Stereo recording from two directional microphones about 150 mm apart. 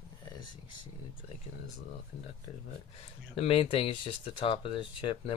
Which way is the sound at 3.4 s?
40° left (ahead or behind).